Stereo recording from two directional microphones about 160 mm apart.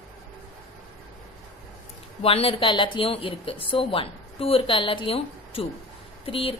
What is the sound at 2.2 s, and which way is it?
A woman's voice, 35° left (ahead or behind).